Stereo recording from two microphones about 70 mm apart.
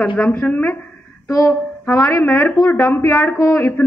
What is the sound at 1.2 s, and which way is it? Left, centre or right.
Speech, left.